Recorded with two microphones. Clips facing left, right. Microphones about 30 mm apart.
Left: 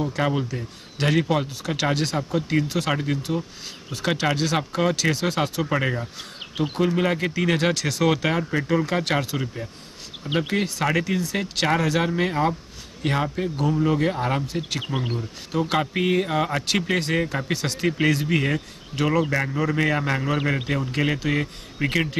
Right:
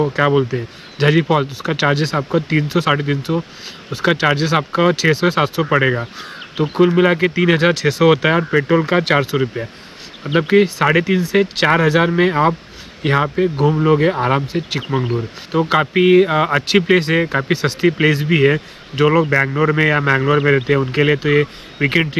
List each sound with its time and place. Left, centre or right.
0.0 s speech: right